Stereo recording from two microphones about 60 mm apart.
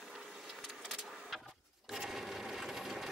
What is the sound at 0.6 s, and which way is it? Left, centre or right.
Vehicle, centre.